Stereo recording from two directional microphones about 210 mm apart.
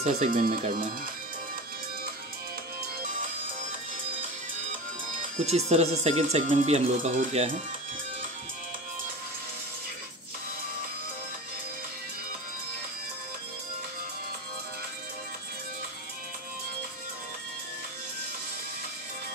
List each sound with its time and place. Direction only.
0.0 s speech: 40° right (ahead or behind)
5.4 s speech: 30° right (ahead or behind)